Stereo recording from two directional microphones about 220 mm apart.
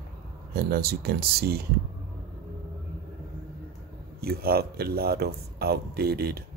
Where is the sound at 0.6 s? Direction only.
45° right (ahead or behind).